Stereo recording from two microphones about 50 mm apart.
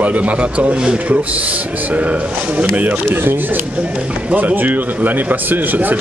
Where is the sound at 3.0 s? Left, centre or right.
Right.